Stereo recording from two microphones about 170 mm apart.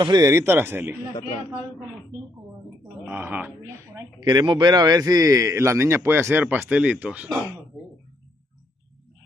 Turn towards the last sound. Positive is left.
turn(degrees=-10)  # may be behind; listen again after turning